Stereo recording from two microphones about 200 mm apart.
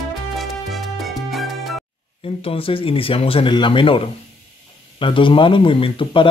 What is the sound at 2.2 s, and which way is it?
Speech, 30° left (ahead or behind).